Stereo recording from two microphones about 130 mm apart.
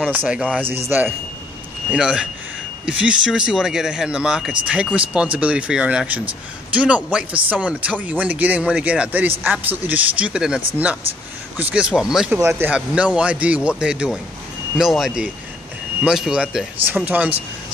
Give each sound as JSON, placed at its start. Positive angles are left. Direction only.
{"t": 0.1, "sound": "speech", "side_deg": -10}
{"t": 12.4, "sound": "speech", "side_deg": -20}
{"t": 12.7, "sound": "speech", "side_deg": -10}